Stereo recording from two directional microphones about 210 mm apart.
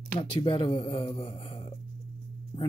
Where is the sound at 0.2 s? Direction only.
25° left (ahead or behind).